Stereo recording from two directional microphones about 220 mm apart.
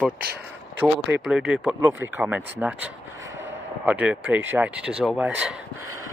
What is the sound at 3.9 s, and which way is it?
Speech, 5° right (ahead or behind).